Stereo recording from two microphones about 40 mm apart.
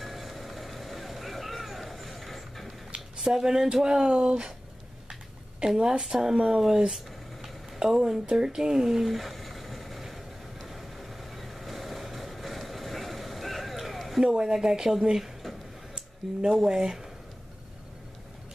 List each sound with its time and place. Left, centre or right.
0.0 s vehicle: centre
3.2 s speech: centre
5.6 s a woman's voice: right
5.9 s speech: centre
7.4 s a sound: centre
10.7 s vehicle: centre
14.2 s speech: centre
15.9 s a sound: right
16.6 s speech: centre